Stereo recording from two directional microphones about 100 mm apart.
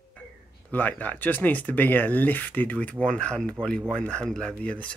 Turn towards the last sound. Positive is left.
turn(degrees=15)  # may be behind; listen again after turning